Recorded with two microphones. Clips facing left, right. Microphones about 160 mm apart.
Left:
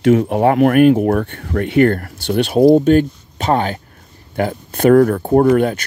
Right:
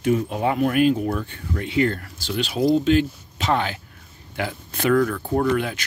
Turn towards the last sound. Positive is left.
turn(degrees=45)  # may be behind; listen again after turning